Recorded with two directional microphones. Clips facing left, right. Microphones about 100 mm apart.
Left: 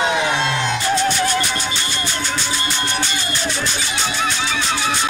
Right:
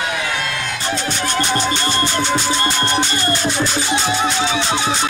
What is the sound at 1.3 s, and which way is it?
Music, 45° right (ahead or behind).